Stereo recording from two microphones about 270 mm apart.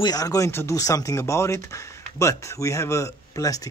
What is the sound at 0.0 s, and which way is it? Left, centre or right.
Speech, centre.